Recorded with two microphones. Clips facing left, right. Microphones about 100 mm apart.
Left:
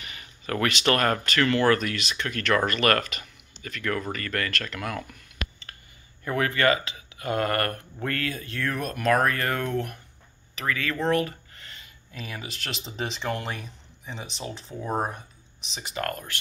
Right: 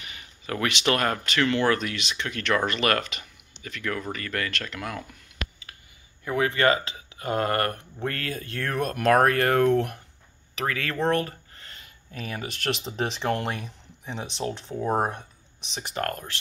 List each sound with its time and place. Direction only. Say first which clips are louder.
0.1 s speech: left 2 dB; 15° right (ahead or behind)
6.2 s speech: right 1 dB; 15° right (ahead or behind)
8.3 s speech: even; 45° right (ahead or behind)
11.1 s speech: left 1 dB; 40° right (ahead or behind); by 13.5 s 55° right (ahead or behind)
14.7 s speech: right 3 dB; 20° right (ahead or behind)
15.9 s speech: right 1 dB; 40° right (ahead or behind)